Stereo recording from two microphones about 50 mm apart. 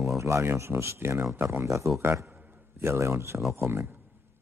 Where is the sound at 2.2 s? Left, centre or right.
Right.